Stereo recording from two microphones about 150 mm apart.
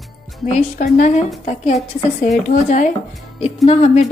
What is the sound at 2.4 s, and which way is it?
Speech, 55° left (ahead or behind).